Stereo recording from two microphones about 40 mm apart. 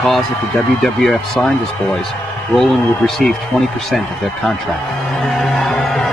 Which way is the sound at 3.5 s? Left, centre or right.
Right.